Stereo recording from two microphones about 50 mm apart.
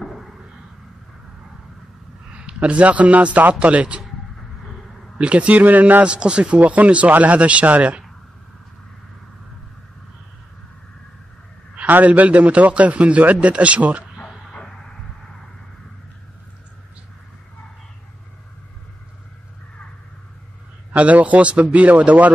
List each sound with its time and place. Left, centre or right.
0.0 s a sound: centre
2.3 s a man's voice: right
5.1 s a man's voice: right
6.0 s a man's voice: right
11.9 s a man's voice: right
20.9 s a man's voice: right